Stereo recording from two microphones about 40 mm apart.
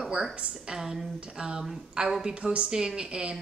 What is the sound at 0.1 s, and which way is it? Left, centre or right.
Speech, right.